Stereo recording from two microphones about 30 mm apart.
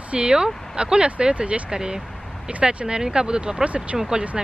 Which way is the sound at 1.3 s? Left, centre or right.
Right.